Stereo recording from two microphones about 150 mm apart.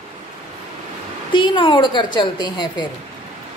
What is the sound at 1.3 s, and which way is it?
A woman's voice, 30° left (ahead or behind).